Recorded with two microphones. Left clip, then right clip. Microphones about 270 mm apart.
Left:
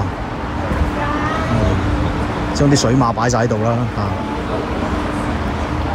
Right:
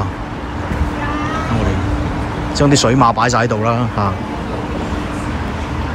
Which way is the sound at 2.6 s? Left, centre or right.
Centre.